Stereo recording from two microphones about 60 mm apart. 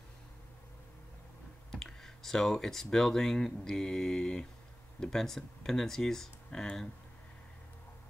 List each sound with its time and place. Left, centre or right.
1.7 s speech: centre